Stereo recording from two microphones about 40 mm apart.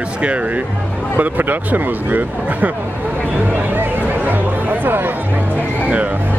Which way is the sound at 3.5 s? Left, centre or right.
Right.